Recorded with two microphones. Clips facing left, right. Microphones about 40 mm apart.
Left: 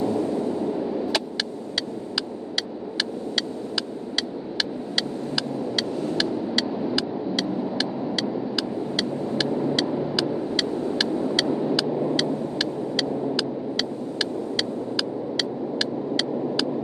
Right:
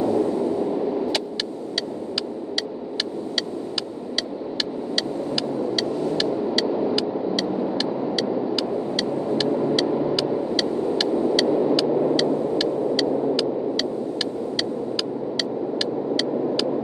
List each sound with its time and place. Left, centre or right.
5.8 s vehicle: centre
9.4 s vehicle: centre
11.1 s vehicle: centre
11.3 s vehicle: centre